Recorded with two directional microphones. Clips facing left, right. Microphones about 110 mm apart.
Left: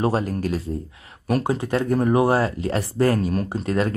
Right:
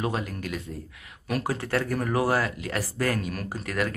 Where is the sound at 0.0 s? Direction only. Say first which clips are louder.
Left 8 dB; 35° left (ahead or behind).